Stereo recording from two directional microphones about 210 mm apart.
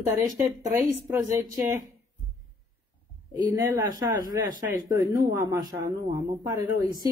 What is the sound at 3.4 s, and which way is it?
Speech, 10° right (ahead or behind).